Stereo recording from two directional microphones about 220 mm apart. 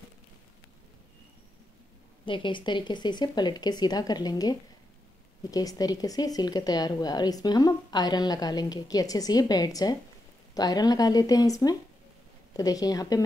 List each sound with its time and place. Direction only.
2.2 s speech: 20° left (ahead or behind)